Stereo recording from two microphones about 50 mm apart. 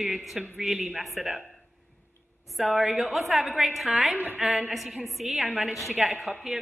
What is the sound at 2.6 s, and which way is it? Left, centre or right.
A woman's voice, centre.